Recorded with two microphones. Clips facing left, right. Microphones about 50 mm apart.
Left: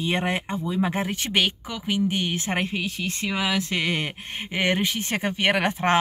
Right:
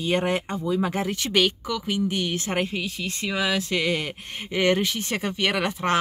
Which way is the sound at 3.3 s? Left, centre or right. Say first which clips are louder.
Right 1 dB; centre.